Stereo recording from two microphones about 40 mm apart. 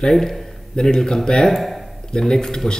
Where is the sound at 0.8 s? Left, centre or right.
Centre.